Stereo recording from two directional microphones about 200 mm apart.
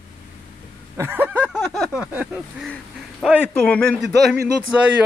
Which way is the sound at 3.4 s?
5° left (ahead or behind).